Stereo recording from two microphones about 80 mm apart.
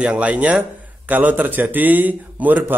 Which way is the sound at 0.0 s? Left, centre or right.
Centre.